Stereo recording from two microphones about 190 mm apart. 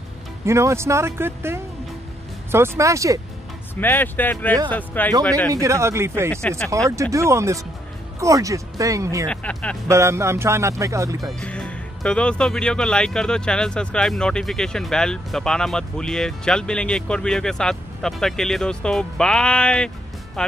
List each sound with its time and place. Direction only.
0.5 s speech: 15° right (ahead or behind)
3.8 s speech: 10° left (ahead or behind)
5.5 s speech: 15° right (ahead or behind)
9.3 s speech: 5° left (ahead or behind)
9.8 s speech: 15° right (ahead or behind)
11.1 s speech: centre (ahead or behind)